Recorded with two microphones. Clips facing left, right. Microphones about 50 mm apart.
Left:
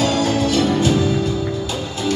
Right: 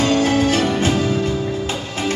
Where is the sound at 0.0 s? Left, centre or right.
Right.